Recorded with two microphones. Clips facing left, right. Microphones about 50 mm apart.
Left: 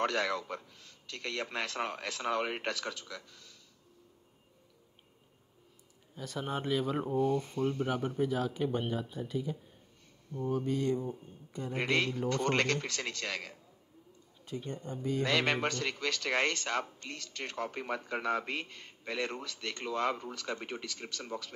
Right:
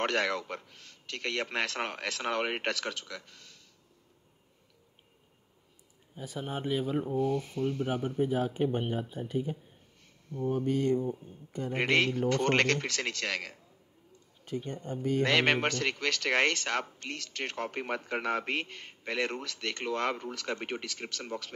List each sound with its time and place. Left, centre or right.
0.0 s a man's voice: right
6.2 s speech: centre
7.0 s speech: centre
7.9 s speech: right
8.9 s mantra: right
11.5 s speech: right
14.4 s speech: right
16.1 s speech: right
20.4 s speech: right